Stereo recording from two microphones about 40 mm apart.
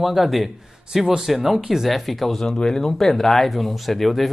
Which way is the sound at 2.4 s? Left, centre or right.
Centre.